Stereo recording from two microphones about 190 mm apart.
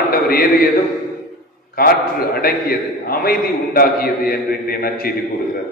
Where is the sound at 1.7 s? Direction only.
50° left (ahead or behind).